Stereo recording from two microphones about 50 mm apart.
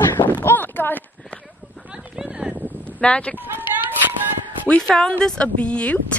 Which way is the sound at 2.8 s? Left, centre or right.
Left.